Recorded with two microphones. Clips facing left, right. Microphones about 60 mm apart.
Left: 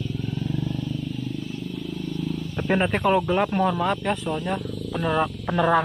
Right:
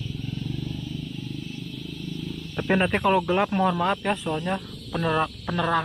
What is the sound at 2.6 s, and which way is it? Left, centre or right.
Speech, centre.